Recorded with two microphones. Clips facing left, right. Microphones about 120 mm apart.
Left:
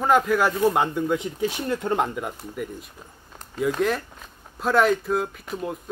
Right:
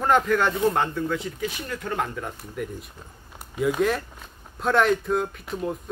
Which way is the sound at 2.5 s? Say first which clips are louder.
Even; centre (ahead or behind).